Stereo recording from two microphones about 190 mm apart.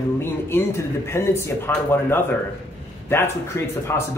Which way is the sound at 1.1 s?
15° left (ahead or behind).